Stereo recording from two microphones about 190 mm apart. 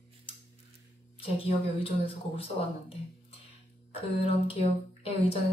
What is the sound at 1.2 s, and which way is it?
Speech, 30° left (ahead or behind).